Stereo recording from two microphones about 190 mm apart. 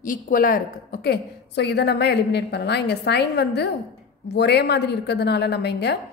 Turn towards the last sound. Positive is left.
turn(degrees=60)  # may be behind; listen again after turning